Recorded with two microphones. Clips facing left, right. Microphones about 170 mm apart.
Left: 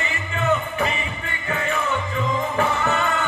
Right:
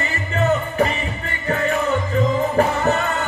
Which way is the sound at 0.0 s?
40° right (ahead or behind).